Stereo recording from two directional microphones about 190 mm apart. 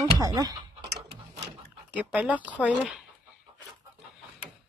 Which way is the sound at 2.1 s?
10° right (ahead or behind).